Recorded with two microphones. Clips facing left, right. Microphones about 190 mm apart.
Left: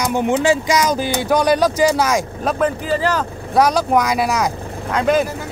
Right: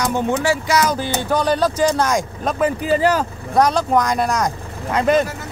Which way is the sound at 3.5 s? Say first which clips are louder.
Left 1 dB; 5° left (ahead or behind).